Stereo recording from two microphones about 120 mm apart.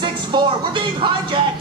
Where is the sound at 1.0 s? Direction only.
45° right (ahead or behind).